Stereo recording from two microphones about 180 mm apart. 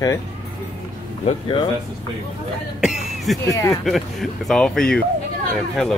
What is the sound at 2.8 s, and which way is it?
Cough, centre (ahead or behind).